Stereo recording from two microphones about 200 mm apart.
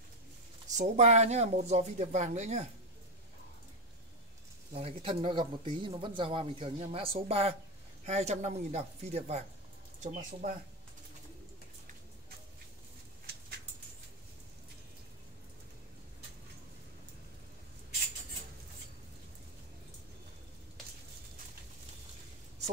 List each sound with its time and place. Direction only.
0.7 s speech: 35° right (ahead or behind)
4.7 s speech: 30° right (ahead or behind)